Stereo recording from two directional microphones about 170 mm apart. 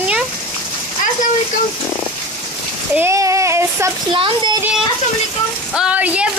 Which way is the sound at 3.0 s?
15° right (ahead or behind).